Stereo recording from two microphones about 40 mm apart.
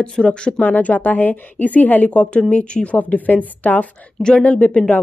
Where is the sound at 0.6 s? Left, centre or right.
Left.